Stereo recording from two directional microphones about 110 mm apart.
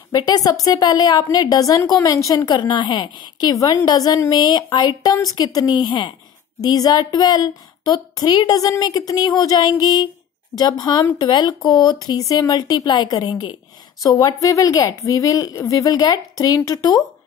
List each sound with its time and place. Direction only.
0.1 s a woman's voice: 35° left (ahead or behind)